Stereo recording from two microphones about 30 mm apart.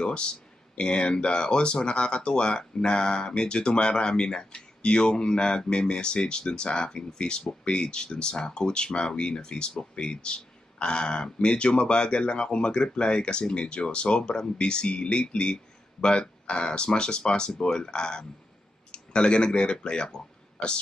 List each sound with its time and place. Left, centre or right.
0.0 s speech: left